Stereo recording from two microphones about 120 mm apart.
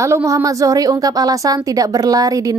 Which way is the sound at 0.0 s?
25° right (ahead or behind).